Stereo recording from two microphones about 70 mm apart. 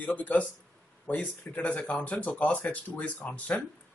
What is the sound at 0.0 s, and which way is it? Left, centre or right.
Speech, left.